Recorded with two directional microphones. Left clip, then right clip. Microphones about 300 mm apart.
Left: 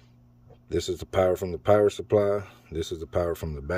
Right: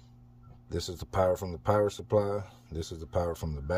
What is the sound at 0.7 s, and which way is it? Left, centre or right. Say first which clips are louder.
Speech: left 7 dB; centre.